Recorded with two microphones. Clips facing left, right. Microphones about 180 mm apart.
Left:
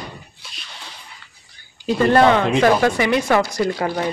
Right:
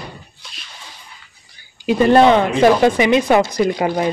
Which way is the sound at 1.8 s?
15° right (ahead or behind).